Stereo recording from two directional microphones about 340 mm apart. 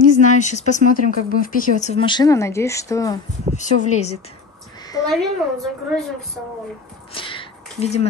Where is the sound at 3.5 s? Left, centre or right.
Centre.